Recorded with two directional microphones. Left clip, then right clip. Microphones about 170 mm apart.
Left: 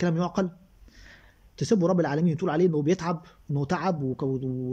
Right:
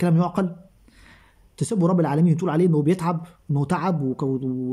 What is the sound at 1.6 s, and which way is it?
Speech, 20° right (ahead or behind).